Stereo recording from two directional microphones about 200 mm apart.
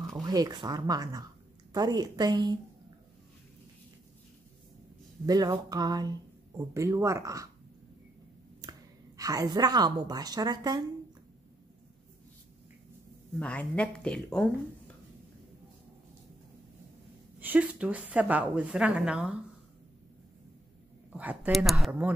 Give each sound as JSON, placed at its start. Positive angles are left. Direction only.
{"t": 0.2, "sound": "speech", "side_deg": -20}
{"t": 5.2, "sound": "speech", "side_deg": -20}
{"t": 8.5, "sound": "a woman's voice", "side_deg": -20}
{"t": 13.4, "sound": "speech", "side_deg": 5}
{"t": 17.4, "sound": "speech", "side_deg": -10}
{"t": 21.1, "sound": "speech", "side_deg": -5}